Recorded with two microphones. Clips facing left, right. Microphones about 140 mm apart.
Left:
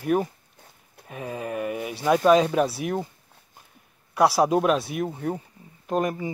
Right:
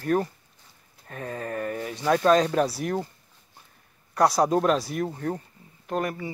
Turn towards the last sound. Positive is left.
turn(degrees=20)  # may be behind; listen again after turning